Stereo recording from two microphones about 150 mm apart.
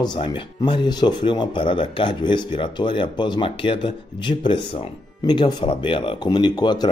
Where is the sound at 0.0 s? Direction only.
30° left (ahead or behind).